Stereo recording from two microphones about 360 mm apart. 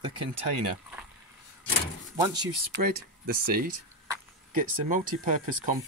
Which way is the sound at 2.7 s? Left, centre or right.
Right.